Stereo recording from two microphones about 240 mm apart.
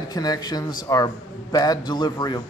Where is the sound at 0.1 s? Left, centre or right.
Centre.